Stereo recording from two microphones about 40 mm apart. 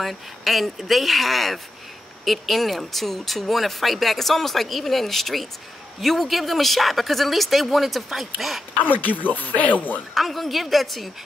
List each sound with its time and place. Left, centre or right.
0.0 s speech: centre
8.8 s speech: left
10.1 s speech: centre